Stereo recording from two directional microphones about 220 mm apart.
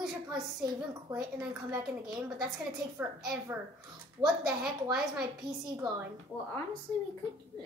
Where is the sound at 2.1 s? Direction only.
Centre (ahead or behind).